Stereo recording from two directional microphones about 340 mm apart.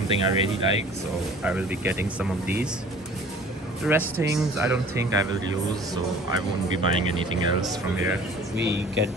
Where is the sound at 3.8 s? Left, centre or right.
Centre.